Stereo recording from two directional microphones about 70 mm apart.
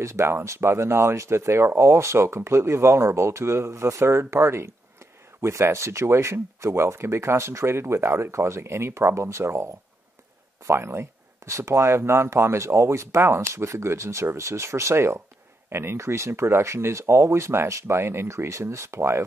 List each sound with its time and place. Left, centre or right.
0.0 s speech: right